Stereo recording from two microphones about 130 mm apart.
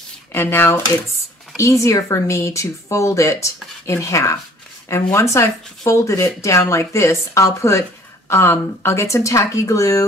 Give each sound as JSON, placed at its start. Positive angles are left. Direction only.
{"t": 0.3, "sound": "speech", "side_deg": 15}